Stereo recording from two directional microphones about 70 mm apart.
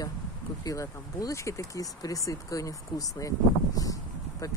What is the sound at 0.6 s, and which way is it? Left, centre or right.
Speech, left.